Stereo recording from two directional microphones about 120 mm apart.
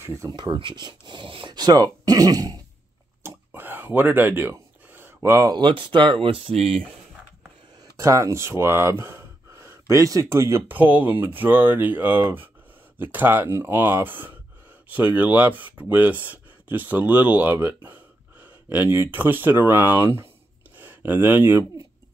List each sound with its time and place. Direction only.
0.0 s speech: 25° right (ahead or behind)
0.3 s speech: 45° right (ahead or behind)
3.2 s a sound: 20° right (ahead or behind)
5.5 s speech: 45° right (ahead or behind)
7.8 s speech: 25° right (ahead or behind)